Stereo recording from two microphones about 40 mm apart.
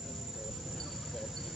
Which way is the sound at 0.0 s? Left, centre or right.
Centre.